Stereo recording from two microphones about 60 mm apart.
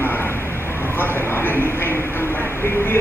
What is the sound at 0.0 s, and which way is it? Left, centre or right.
Vehicle, left.